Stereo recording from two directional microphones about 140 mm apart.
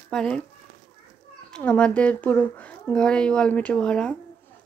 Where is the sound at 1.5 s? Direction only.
10° left (ahead or behind).